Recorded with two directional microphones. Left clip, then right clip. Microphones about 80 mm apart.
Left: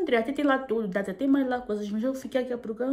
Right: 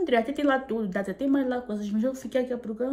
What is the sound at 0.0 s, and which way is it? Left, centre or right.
A woman's voice, left.